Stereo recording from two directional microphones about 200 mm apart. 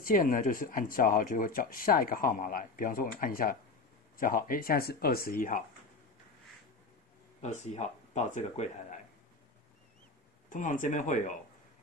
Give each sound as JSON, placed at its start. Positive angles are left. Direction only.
{"t": 0.0, "sound": "speech", "side_deg": 45}
{"t": 7.4, "sound": "speech", "side_deg": 35}
{"t": 10.5, "sound": "speech", "side_deg": 40}